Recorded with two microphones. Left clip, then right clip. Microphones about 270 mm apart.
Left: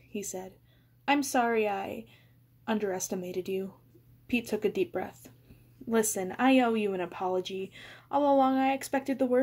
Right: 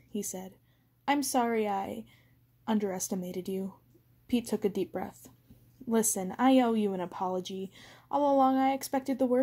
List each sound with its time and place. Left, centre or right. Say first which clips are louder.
0.1 s speech: left 1 dB; right